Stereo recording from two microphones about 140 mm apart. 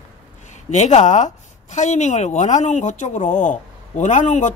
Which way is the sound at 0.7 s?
55° left (ahead or behind).